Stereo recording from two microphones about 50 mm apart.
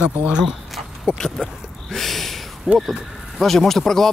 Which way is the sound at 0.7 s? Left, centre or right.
Centre.